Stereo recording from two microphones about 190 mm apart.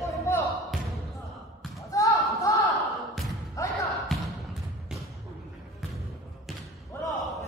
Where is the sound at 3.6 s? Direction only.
15° left (ahead or behind).